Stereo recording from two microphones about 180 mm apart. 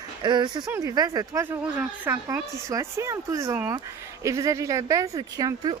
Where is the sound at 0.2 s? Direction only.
25° right (ahead or behind).